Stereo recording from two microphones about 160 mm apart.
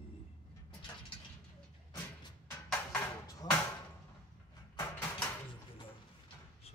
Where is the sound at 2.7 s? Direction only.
15° left (ahead or behind).